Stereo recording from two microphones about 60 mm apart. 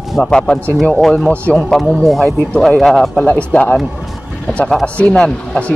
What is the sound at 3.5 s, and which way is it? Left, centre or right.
Speech, left.